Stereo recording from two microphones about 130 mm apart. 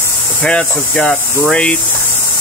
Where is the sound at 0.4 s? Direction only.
10° left (ahead or behind).